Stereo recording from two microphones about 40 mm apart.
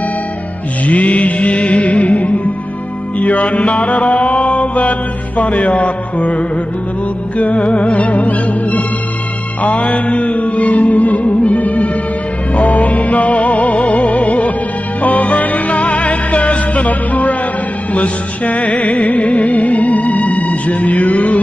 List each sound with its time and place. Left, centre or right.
0.8 s music: left
3.2 s mantra: left
5.4 s music: left